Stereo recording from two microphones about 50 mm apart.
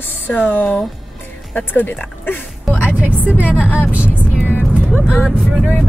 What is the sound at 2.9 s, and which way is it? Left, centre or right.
A woman's voice, right.